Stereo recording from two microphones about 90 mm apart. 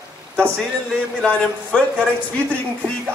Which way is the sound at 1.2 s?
10° left (ahead or behind).